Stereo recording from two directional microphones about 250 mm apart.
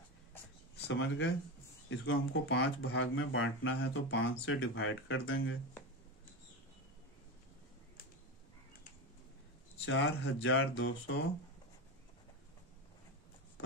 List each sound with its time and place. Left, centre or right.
0.8 s speech: left
9.8 s speech: left